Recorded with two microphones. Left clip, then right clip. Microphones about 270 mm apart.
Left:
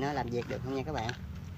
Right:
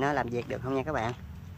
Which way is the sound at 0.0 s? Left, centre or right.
Centre.